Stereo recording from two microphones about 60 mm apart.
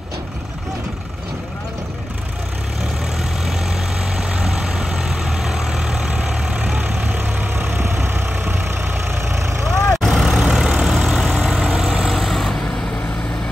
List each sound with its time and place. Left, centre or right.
3.2 s vehicle: centre; by 9.0 s right
9.2 s vehicle: right
9.9 s vehicle: centre